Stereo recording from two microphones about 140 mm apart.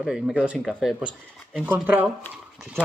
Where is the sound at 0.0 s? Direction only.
5° right (ahead or behind).